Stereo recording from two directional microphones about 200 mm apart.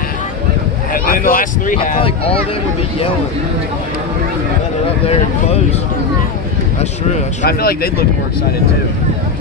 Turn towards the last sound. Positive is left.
turn(degrees=50)  # may be behind; listen again after turning